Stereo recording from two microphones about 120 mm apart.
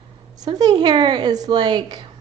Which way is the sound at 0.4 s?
35° right (ahead or behind).